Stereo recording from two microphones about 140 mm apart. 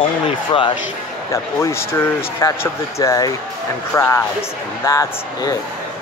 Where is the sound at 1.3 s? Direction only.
20° left (ahead or behind).